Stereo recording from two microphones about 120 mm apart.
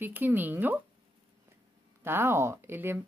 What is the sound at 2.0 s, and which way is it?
Speech, 20° right (ahead or behind).